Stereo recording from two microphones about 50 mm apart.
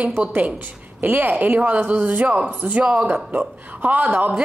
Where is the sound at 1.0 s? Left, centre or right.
Right.